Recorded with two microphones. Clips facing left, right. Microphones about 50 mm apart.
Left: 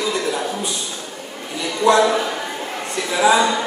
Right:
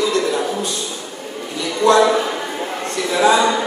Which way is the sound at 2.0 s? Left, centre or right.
Centre.